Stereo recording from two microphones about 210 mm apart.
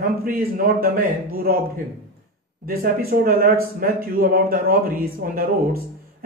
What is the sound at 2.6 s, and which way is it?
Speech, 45° right (ahead or behind).